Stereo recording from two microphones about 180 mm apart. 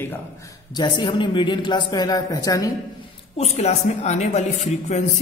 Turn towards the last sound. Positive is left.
turn(degrees=40)  # may be behind; listen again after turning